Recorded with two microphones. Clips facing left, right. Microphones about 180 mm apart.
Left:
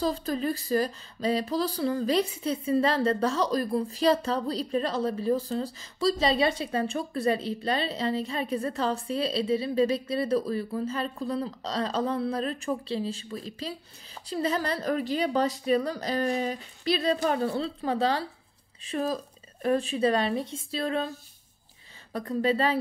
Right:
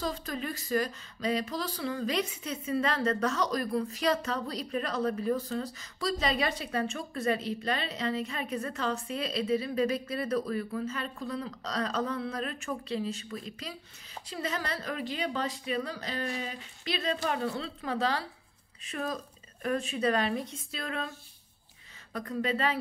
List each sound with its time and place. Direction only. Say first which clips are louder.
0.0 s speech: left 7 dB; 35° left (ahead or behind)
22.1 s speech: left 5 dB; 35° left (ahead or behind)